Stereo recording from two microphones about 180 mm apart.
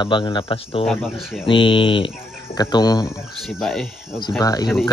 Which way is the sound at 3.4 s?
Centre (ahead or behind).